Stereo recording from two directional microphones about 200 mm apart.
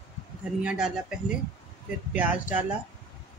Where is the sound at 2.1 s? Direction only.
5° right (ahead or behind).